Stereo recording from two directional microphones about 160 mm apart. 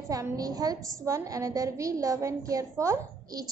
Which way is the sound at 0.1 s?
20° right (ahead or behind).